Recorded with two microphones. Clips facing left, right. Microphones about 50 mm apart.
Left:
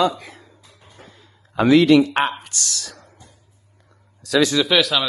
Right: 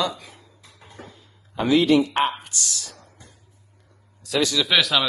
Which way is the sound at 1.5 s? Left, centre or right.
Left.